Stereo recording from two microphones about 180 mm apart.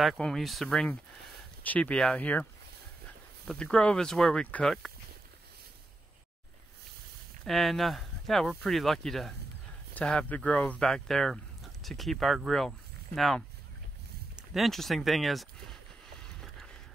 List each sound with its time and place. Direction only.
0.0 s speech: centre (ahead or behind)
3.4 s speech: 5° left (ahead or behind)
7.4 s speech: centre (ahead or behind)
14.3 s a sound: centre (ahead or behind)